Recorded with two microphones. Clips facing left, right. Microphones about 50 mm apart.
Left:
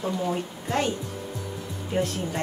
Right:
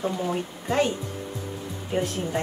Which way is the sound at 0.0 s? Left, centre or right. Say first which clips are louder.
Even; centre.